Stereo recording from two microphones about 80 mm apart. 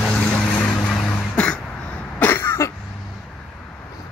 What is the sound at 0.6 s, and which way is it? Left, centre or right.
Vehicle, left.